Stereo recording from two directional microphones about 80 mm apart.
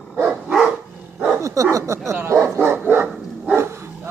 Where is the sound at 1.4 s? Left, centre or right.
Right.